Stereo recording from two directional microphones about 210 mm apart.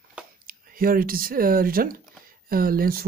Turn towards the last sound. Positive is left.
turn(degrees=-45)  # may be behind; listen again after turning